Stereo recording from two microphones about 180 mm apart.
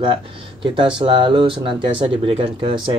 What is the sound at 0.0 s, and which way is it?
Speech, 25° right (ahead or behind).